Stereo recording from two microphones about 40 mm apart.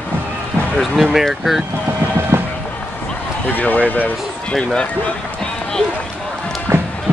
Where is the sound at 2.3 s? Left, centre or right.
Right.